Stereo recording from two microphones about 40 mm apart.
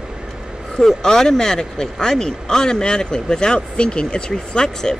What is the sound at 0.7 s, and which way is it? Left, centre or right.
Speech, centre.